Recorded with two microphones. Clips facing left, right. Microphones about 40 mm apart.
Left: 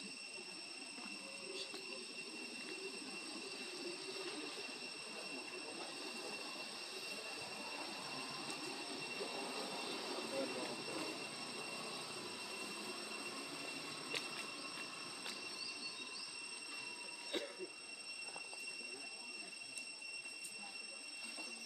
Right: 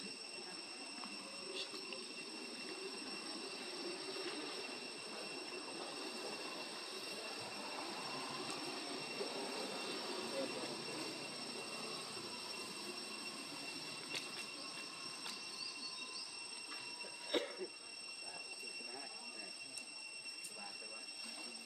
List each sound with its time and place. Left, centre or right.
7.8 s train: centre
9.1 s train: centre
10.2 s train: centre
17.3 s a sound: right